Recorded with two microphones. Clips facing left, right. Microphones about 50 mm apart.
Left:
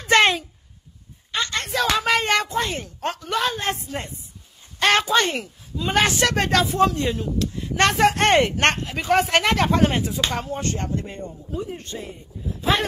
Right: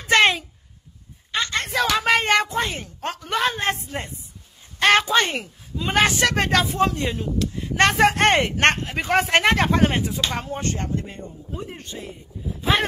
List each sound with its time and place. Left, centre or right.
0.1 s a sound: centre
1.5 s a sound: right
2.5 s speech: centre
3.3 s speech: right
4.7 s a sound: centre
5.1 s speech: centre
5.9 s speech: centre
8.3 s speech: centre
8.5 s speech: right
10.8 s speech: centre